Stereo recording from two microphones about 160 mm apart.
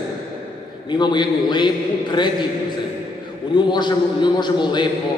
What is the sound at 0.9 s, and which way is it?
Speech, 25° left (ahead or behind).